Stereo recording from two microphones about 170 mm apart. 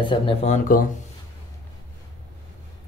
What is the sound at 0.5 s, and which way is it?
Speech, 50° left (ahead or behind).